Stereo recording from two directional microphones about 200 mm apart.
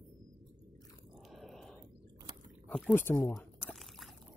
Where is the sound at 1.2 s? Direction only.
Centre (ahead or behind).